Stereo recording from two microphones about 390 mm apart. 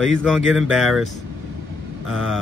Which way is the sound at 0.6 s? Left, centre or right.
Centre.